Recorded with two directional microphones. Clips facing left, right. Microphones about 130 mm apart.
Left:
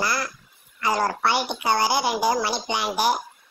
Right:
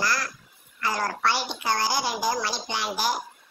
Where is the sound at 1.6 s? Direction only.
15° left (ahead or behind).